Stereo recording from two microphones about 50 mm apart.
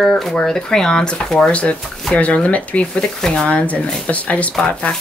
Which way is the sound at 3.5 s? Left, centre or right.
Left.